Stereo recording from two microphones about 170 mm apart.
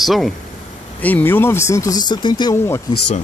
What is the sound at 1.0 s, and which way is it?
Speech, 10° left (ahead or behind).